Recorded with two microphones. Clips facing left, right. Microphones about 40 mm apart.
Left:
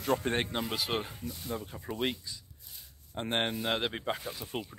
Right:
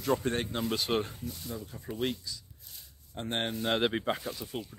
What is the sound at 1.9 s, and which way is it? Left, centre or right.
Speech, centre.